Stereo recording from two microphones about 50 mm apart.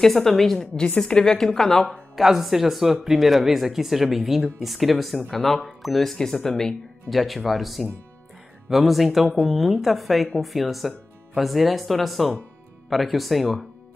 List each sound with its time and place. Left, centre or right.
0.0 s speech: centre
0.7 s a woman's voice: centre
2.1 s speech: centre